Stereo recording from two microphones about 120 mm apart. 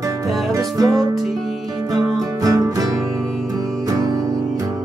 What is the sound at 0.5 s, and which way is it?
Music, 30° right (ahead or behind).